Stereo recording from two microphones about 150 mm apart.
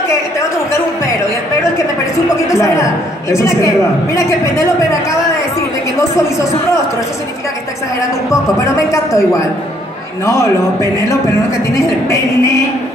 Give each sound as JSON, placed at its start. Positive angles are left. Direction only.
{"t": 0.1, "sound": "a sound", "side_deg": 20}
{"t": 1.8, "sound": "a woman's voice", "side_deg": 20}
{"t": 8.5, "sound": "a man's voice", "side_deg": 20}
{"t": 10.2, "sound": "a man's voice", "side_deg": 20}